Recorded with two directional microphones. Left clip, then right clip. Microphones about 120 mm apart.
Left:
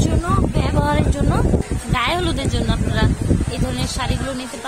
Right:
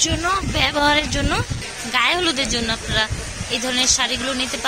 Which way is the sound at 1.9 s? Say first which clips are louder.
Right 2 dB; 20° left (ahead or behind).